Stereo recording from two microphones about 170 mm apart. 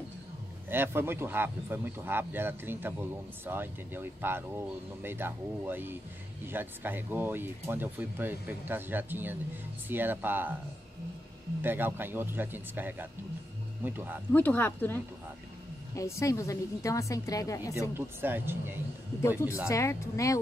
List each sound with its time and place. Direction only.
0.7 s speech: 15° right (ahead or behind)
11.6 s speech: 10° right (ahead or behind)
14.3 s a woman's voice: 10° left (ahead or behind)
17.9 s speech: 15° right (ahead or behind)
19.7 s a woman's voice: 20° left (ahead or behind)